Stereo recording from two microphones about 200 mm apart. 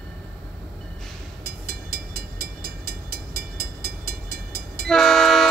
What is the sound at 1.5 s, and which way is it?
Vehicle, 50° right (ahead or behind).